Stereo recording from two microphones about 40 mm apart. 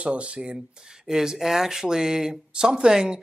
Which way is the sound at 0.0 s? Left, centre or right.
Right.